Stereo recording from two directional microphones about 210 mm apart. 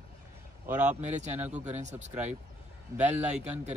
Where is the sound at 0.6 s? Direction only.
5° right (ahead or behind).